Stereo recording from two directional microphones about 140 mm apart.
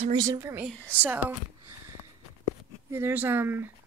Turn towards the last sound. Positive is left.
turn(degrees=-15)  # may be behind; listen again after turning